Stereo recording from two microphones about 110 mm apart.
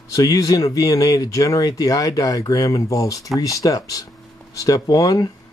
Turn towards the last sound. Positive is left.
turn(degrees=35)  # may be behind; listen again after turning